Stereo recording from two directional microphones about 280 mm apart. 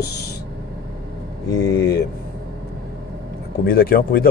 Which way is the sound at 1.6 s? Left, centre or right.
Left.